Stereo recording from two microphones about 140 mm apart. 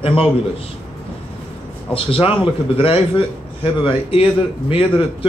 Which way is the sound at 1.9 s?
40° left (ahead or behind).